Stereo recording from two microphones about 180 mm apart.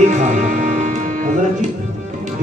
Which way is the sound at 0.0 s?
40° right (ahead or behind).